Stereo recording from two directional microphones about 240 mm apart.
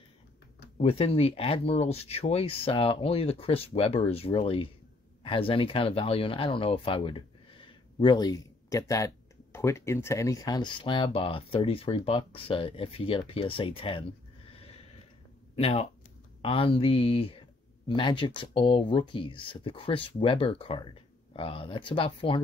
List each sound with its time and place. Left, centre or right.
0.7 s speech: left
15.5 s speech: left